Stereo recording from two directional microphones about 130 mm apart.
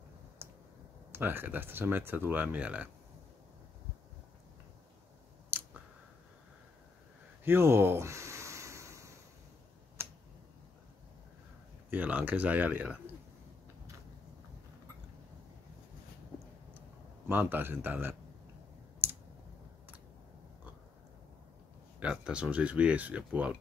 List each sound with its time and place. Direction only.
0.4 s a sound: 20° right (ahead or behind)
1.1 s speech: 15° right (ahead or behind)
5.5 s chewing: 15° right (ahead or behind)
7.4 s a sound: 20° right (ahead or behind)
10.0 s tick-tock: 20° right (ahead or behind)
11.9 s speech: 15° right (ahead or behind)
17.3 s speech: 15° right (ahead or behind)
19.0 s clicking: 15° right (ahead or behind)
22.0 s speech: 5° right (ahead or behind)